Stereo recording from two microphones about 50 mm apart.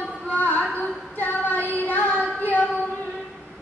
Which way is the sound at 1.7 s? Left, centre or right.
Left.